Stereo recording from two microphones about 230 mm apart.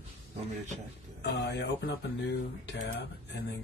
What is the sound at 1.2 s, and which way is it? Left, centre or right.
Speech, left.